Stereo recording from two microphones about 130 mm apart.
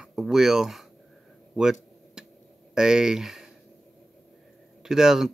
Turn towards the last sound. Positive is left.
turn(degrees=-5)  # may be behind; listen again after turning